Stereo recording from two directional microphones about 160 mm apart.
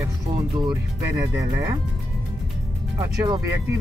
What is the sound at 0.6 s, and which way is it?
Speech, 25° right (ahead or behind).